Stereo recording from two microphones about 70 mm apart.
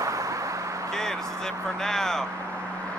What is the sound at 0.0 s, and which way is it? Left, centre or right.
Vehicle, right.